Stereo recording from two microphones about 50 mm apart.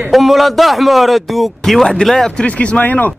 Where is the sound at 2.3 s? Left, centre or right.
Left.